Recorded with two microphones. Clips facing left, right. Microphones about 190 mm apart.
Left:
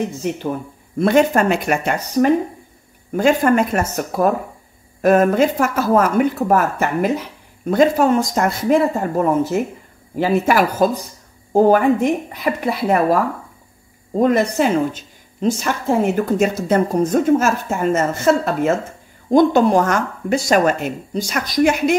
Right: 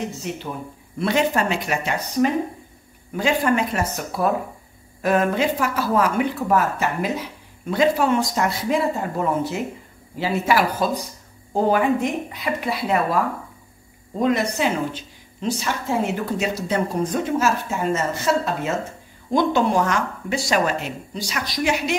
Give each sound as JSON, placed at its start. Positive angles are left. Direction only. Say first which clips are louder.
{"t": 0.9, "sound": "speech", "louder": "left 6 dB", "side_deg": 50}
{"t": 14.2, "sound": "speech", "louder": "left 5 dB", "side_deg": 50}